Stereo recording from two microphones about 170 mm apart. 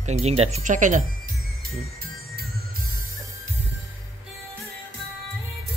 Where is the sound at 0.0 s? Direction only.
40° right (ahead or behind).